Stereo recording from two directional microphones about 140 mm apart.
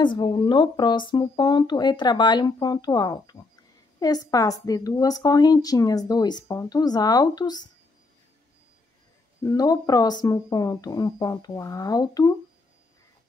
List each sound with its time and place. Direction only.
0.0 s speech: 35° left (ahead or behind)
9.4 s speech: 25° left (ahead or behind)